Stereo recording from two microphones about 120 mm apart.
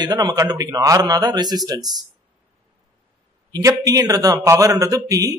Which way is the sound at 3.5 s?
30° right (ahead or behind).